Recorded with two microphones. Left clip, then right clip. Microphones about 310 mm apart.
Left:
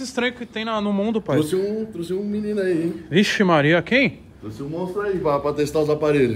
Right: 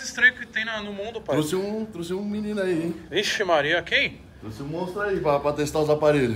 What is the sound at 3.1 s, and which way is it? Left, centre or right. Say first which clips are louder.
A man's voice: left 4 dB; centre.